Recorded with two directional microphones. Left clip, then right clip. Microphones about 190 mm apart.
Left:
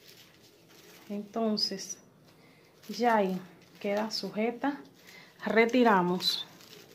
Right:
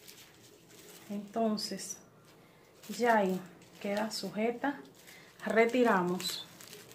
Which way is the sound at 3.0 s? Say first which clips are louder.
Left 1 dB; 35° left (ahead or behind).